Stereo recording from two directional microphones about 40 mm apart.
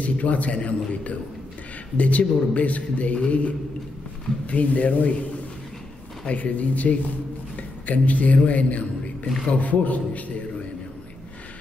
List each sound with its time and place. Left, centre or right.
0.0 s speech: left
4.5 s speech: left
6.2 s speech: left